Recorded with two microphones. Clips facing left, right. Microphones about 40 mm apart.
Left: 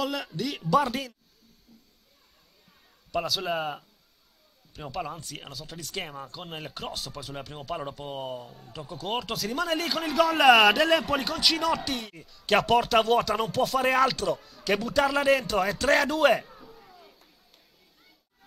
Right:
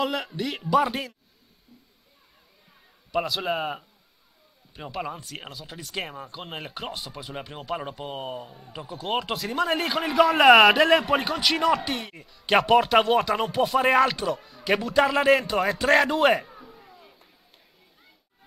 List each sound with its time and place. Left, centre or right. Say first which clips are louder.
0.0 s speech: right 3 dB; centre
3.1 s speech: right 2 dB; centre
10.4 s speech: right 3 dB; centre
16.1 s a sound: right 1 dB; centre